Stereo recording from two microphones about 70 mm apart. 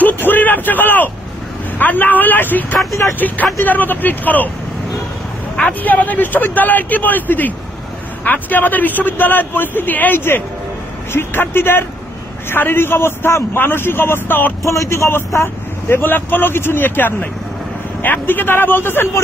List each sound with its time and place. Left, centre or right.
0.0 s vehicle: left
1.8 s a man's voice: left
5.6 s a man's voice: left
14.6 s a man's voice: left